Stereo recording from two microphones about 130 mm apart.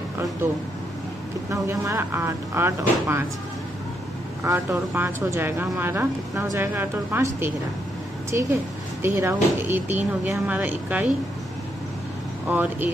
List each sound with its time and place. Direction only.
1.5 s speech: 20° right (ahead or behind)
4.5 s a woman's voice: 20° right (ahead or behind)
12.4 s speech: 15° right (ahead or behind)